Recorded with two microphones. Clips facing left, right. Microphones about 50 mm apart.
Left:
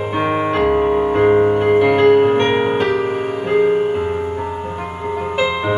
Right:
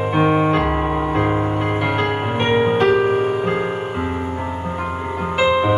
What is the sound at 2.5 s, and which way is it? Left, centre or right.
Music, centre.